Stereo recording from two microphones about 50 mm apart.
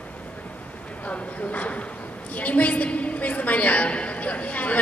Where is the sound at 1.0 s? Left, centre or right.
Left.